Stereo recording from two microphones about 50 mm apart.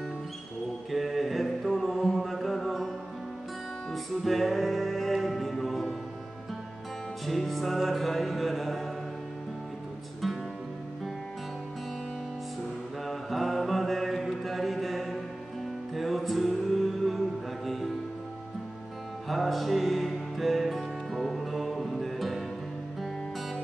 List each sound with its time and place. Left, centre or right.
0.9 s music: centre
3.9 s music: centre
7.2 s music: centre
10.2 s music: centre
13.0 s mantra: centre
14.4 s a sound: centre
15.9 s music: centre
19.2 s music: centre